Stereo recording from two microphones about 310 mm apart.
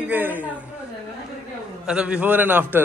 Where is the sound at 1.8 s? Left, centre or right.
Centre.